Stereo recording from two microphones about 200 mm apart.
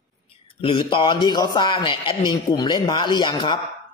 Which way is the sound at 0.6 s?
25° left (ahead or behind).